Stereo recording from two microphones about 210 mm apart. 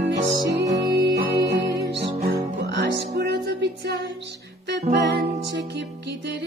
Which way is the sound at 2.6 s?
55° right (ahead or behind).